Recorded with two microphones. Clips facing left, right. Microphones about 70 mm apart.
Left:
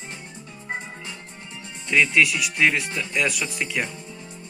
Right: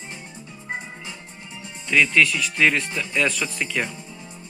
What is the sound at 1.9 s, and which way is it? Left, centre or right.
Music, left.